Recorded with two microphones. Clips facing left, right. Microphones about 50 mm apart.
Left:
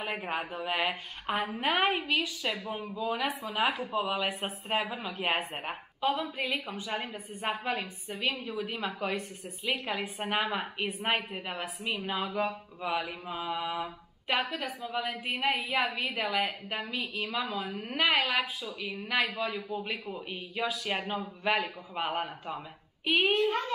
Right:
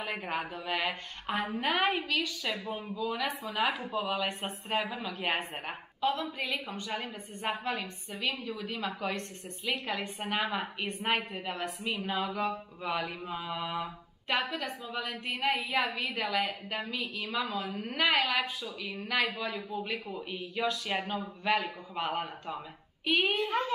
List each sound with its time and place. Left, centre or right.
0.0 s a woman's voice: centre
3.3 s a woman's voice: centre
23.3 s a woman's voice: centre